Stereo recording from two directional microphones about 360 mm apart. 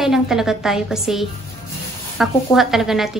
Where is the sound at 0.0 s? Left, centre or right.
Centre.